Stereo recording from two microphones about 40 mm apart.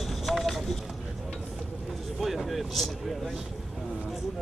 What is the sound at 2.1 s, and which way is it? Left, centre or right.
Speech, centre.